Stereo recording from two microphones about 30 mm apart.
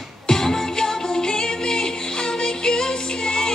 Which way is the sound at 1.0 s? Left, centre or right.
Left.